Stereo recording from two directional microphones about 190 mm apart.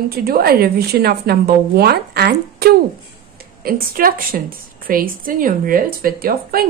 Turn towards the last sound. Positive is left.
turn(degrees=-50)  # may be behind; listen again after turning